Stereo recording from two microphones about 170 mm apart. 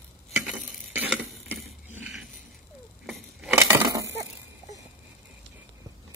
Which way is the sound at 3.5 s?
15° right (ahead or behind).